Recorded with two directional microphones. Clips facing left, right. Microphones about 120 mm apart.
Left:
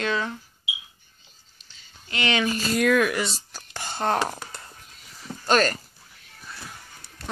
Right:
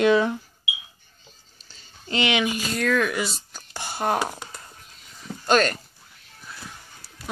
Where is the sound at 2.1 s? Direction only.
15° right (ahead or behind).